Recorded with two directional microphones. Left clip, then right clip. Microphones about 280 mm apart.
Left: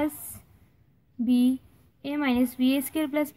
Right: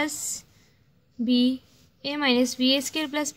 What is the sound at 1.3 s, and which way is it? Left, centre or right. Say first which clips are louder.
A woman's voice: right 1 dB; centre.